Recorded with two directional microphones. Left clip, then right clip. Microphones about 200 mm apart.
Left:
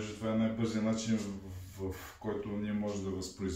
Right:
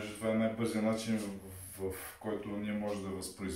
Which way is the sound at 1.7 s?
10° right (ahead or behind).